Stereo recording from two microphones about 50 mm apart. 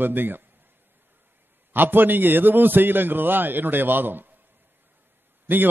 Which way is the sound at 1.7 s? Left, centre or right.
Right.